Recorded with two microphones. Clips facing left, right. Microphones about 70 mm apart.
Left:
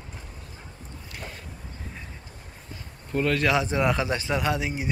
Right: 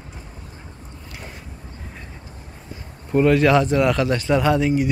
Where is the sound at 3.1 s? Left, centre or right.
Right.